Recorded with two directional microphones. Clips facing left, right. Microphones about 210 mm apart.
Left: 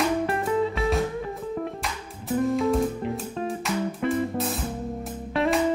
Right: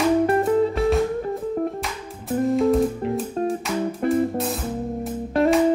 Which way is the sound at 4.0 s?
45° right (ahead or behind).